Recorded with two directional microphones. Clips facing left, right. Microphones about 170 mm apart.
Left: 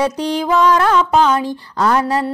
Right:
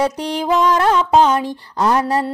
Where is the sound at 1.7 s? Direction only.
20° right (ahead or behind).